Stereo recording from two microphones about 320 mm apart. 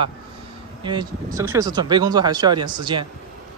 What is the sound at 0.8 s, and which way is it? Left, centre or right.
Speech, centre.